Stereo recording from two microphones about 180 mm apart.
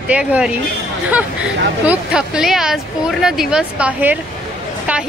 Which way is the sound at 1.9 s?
5° right (ahead or behind).